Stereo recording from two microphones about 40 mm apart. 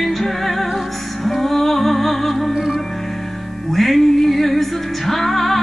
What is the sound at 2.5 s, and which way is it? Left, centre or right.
Music, centre.